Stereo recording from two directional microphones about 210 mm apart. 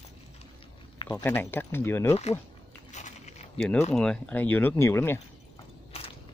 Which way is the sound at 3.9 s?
5° left (ahead or behind).